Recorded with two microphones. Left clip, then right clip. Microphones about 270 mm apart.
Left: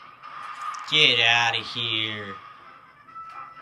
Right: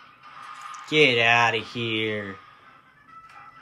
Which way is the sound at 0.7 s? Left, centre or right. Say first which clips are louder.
Even; centre.